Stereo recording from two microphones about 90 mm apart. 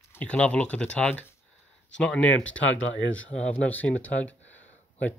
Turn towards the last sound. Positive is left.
turn(degrees=15)  # may be behind; listen again after turning